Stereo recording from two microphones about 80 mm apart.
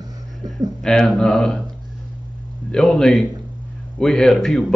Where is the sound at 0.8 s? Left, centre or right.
Centre.